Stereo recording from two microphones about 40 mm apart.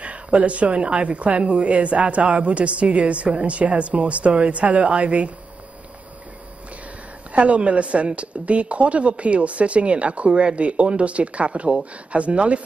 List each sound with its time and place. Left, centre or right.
0.0 s speech: right
7.3 s speech: right